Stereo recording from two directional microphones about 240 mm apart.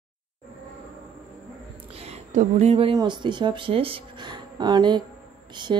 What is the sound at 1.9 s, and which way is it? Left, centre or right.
Speech, right.